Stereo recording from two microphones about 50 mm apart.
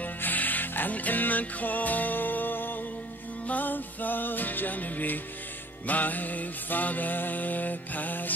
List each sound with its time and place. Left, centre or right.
0.0 s music: left